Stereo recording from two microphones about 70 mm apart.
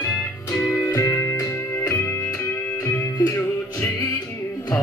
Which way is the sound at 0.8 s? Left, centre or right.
Left.